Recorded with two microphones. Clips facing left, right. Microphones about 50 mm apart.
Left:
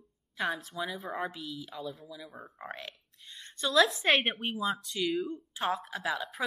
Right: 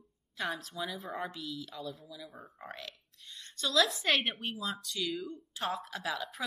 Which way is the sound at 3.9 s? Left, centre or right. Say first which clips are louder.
Left 4 dB; left.